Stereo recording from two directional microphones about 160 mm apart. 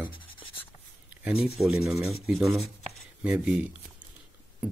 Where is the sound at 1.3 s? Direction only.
35° left (ahead or behind).